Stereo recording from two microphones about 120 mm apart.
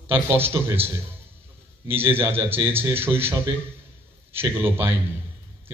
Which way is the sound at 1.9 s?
20° right (ahead or behind).